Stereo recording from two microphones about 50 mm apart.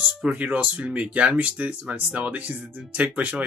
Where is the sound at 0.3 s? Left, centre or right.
Right.